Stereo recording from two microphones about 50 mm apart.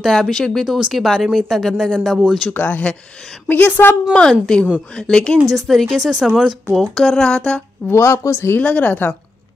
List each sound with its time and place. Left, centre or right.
0.0 s speech: centre
2.5 s speech: left
4.1 s speech: centre
5.4 s speech: centre
7.0 s speech: centre
7.2 s a sound: left
7.9 s speech: left
8.5 s speech: left